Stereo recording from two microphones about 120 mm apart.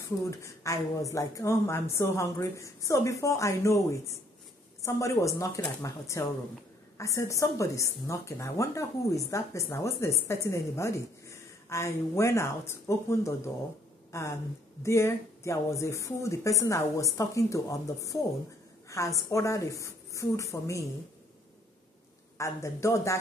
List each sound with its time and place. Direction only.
0.2 s a woman's voice: 25° left (ahead or behind)
22.4 s a woman's voice: 25° left (ahead or behind)